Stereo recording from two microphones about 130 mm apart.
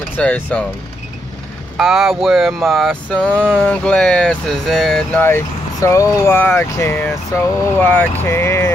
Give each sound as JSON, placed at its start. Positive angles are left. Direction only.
{"t": 0.2, "sound": "speech", "side_deg": 10}
{"t": 1.8, "sound": "a sound", "side_deg": 0}
{"t": 5.2, "sound": "speech", "side_deg": 20}